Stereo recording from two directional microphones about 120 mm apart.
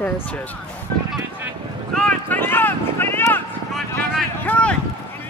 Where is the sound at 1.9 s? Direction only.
10° left (ahead or behind).